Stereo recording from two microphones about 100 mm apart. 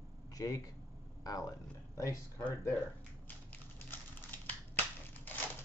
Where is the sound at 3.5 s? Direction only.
20° left (ahead or behind).